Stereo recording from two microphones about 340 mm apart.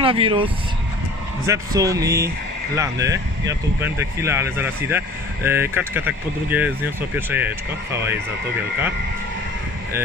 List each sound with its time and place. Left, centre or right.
0.0 s speech: centre